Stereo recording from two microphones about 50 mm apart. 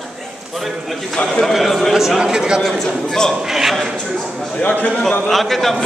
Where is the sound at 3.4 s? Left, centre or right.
Centre.